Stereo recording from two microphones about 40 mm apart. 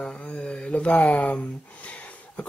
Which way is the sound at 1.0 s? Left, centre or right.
Left.